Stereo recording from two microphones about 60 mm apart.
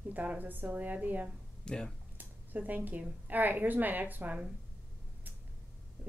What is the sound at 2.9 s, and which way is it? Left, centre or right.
A woman's voice, right.